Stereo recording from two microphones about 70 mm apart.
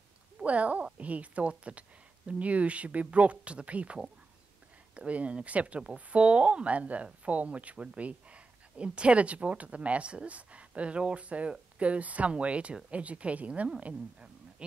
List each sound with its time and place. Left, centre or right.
0.5 s a woman's voice: centre